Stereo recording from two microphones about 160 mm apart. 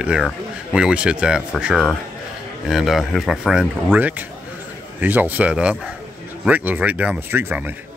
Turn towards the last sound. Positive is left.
turn(degrees=-15)  # may be behind; listen again after turning